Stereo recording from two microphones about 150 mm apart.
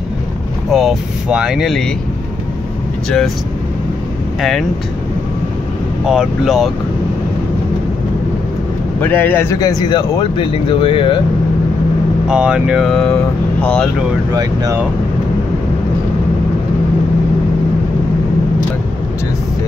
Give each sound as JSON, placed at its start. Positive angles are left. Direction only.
{"t": 0.7, "sound": "speech", "side_deg": 0}
{"t": 4.4, "sound": "speech", "side_deg": 0}
{"t": 6.0, "sound": "speech", "side_deg": -5}
{"t": 9.0, "sound": "speech", "side_deg": 15}
{"t": 12.3, "sound": "speech", "side_deg": -5}
{"t": 14.3, "sound": "speech", "side_deg": -25}